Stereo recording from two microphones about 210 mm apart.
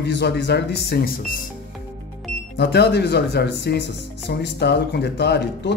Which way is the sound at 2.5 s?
55° left (ahead or behind).